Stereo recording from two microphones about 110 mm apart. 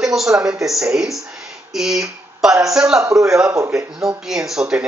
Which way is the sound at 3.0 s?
30° right (ahead or behind).